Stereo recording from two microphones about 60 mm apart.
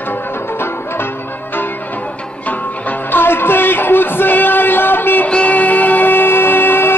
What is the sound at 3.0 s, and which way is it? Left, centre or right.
Music, left.